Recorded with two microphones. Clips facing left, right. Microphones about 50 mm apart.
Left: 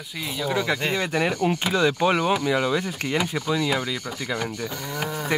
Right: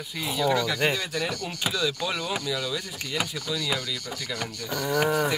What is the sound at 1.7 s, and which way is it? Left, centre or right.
Speech, left.